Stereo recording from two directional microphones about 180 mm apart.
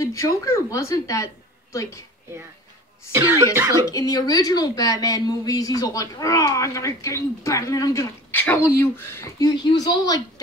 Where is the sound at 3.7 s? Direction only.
20° left (ahead or behind).